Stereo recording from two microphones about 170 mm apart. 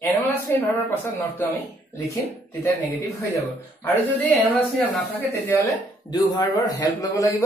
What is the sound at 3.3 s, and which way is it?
A man's voice, 10° left (ahead or behind).